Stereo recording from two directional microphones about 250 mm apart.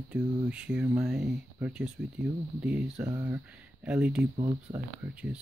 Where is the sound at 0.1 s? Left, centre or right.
Centre.